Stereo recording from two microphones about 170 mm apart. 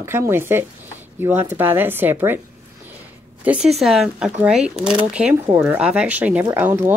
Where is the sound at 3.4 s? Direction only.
5° right (ahead or behind).